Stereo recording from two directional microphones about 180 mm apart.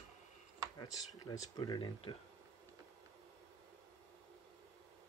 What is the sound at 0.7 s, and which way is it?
Speech, 20° left (ahead or behind).